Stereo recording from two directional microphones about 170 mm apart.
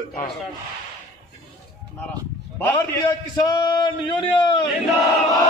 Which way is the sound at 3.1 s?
25° left (ahead or behind).